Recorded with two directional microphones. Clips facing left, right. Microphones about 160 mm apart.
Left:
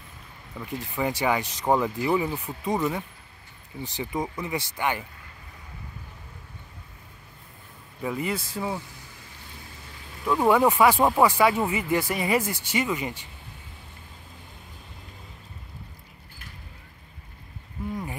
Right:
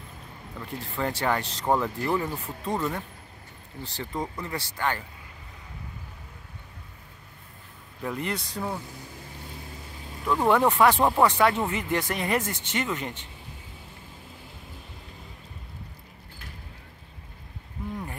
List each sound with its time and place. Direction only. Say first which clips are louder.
0.6 s speech: left 2 dB; 10° left (ahead or behind)
8.0 s speech: left 2 dB; 5° left (ahead or behind)
10.2 s speech: left 2 dB; 5° left (ahead or behind)